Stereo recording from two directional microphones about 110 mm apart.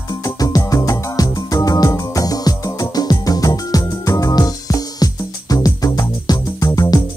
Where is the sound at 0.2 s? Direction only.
35° left (ahead or behind).